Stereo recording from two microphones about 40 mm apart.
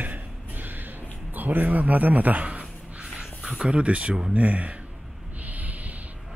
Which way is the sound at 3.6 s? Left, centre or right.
Right.